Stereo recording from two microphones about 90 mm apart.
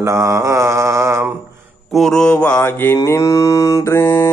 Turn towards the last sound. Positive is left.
turn(degrees=30)  # may be behind; listen again after turning